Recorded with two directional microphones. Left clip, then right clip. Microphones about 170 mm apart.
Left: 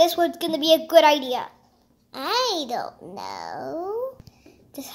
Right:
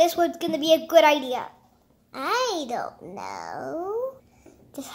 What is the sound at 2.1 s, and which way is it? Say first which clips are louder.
A child's voice: left 1 dB; 10° left (ahead or behind).